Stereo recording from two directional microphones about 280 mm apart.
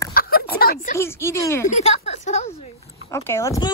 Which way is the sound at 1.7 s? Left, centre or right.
Left.